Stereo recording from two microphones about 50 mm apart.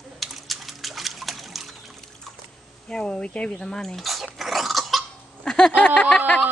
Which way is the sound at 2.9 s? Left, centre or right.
Centre.